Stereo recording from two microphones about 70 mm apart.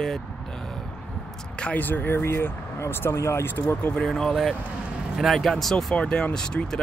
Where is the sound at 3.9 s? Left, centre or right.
Centre.